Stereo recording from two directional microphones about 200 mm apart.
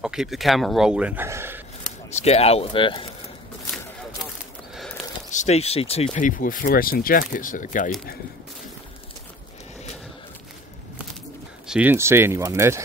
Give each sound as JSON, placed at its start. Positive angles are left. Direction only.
{"t": 0.0, "sound": "a man's voice", "side_deg": -5}
{"t": 2.1, "sound": "speech", "side_deg": 30}
{"t": 5.3, "sound": "speech", "side_deg": 35}
{"t": 6.1, "sound": "speech", "side_deg": 40}
{"t": 11.6, "sound": "speech", "side_deg": -5}